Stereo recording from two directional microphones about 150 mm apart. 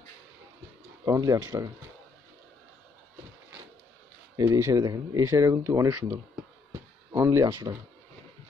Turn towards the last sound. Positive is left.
turn(degrees=-25)  # may be behind; listen again after turning